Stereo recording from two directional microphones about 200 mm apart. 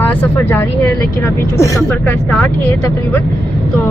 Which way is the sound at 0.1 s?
10° left (ahead or behind).